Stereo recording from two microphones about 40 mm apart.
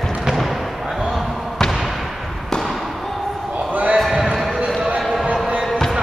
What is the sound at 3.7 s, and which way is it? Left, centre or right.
Basketball bounce, right.